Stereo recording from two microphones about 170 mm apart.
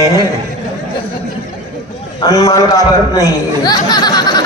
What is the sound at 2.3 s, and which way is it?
Speech, 20° left (ahead or behind).